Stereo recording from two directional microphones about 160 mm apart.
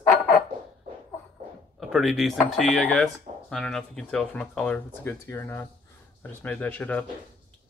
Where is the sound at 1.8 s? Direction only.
Centre (ahead or behind).